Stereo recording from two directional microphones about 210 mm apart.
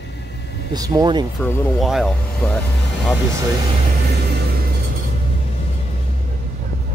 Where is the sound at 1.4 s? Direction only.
10° left (ahead or behind).